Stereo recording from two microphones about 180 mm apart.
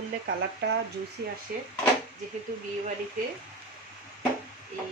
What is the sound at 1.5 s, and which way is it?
Speech, 55° right (ahead or behind).